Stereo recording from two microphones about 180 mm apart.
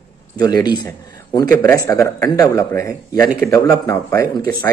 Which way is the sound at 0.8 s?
15° left (ahead or behind).